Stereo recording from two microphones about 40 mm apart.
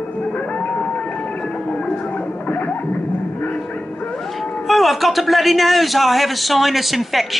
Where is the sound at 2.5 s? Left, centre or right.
Left.